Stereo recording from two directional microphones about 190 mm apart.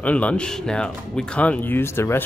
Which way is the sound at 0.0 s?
5° left (ahead or behind).